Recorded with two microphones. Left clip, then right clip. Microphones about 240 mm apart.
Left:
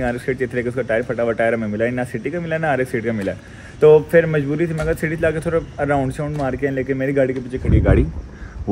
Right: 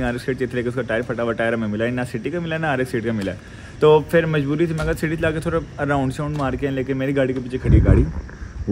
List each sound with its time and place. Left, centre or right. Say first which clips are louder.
0.0 s a man's voice: left 2 dB; centre